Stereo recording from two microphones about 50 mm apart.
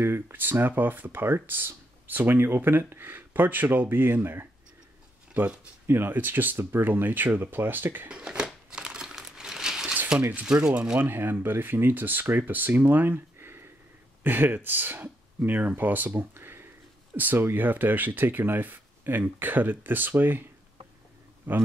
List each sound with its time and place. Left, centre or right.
0.0 s speech: right
4.2 s speech: right
5.4 s speech: right
8.1 s crumpling: centre
10.4 s speech: centre
11.0 s speech: right
21.5 s speech: right